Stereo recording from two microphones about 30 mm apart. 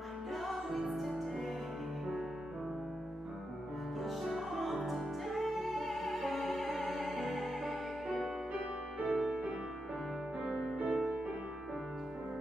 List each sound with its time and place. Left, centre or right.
0.3 s music: centre
4.0 s music: centre
10.4 s music: centre